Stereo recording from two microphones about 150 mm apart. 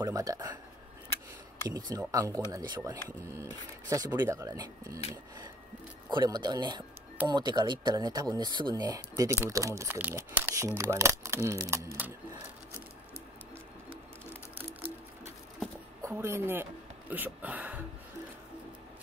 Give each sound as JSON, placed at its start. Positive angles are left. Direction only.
{"t": 0.0, "sound": "speech", "side_deg": -25}
{"t": 1.7, "sound": "speech", "side_deg": -25}
{"t": 6.0, "sound": "speech", "side_deg": -30}
{"t": 16.0, "sound": "speech", "side_deg": -15}